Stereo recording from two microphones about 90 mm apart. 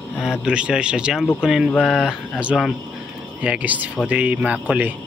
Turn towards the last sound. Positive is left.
turn(degrees=-15)  # may be behind; listen again after turning